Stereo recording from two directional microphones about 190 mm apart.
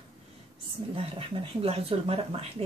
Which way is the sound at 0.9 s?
30° right (ahead or behind).